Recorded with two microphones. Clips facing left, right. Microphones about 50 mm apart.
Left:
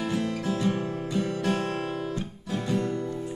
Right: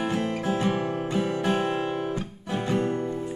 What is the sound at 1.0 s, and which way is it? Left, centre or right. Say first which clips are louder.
Guitar: even; right.